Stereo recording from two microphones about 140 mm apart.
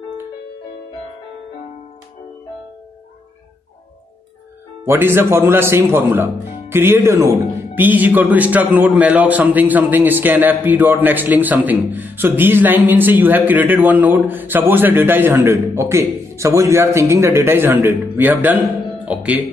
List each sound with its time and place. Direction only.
4.8 s a man's voice: 15° right (ahead or behind)